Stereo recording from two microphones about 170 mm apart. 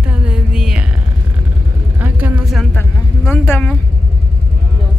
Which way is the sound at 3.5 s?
5° left (ahead or behind).